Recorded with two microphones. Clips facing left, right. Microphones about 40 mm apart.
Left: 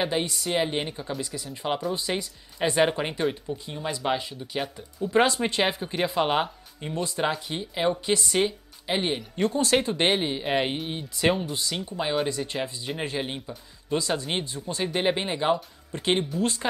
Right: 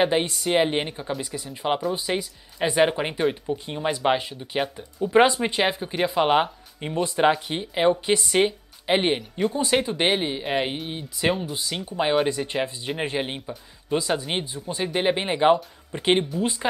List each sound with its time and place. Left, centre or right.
0.0 s speech: right
5.4 s a woman's voice: centre; by 9.2 s right
9.4 s speech: centre
12.0 s speech: right
16.3 s speech: centre